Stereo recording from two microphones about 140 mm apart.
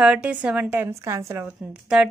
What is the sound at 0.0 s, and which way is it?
A woman's voice, 5° right (ahead or behind).